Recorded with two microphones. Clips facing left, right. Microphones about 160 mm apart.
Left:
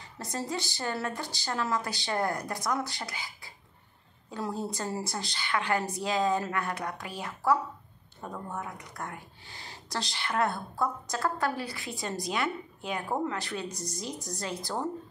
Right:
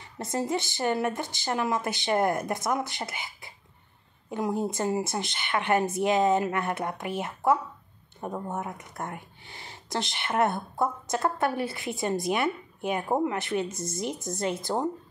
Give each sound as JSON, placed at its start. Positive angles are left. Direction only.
{"t": 0.2, "sound": "a woman's voice", "side_deg": -20}